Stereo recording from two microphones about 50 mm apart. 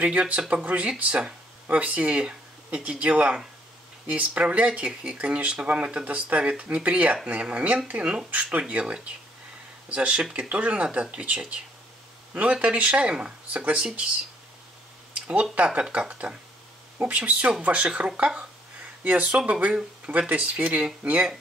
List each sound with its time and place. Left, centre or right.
0.0 s speech: right
15.1 s a sound: right
15.6 s speech: right